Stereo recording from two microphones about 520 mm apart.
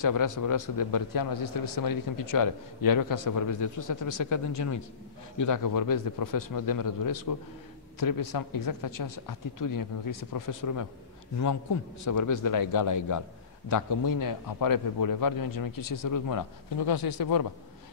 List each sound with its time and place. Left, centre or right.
0.0 s a man's voice: left
12.0 s a man's voice: left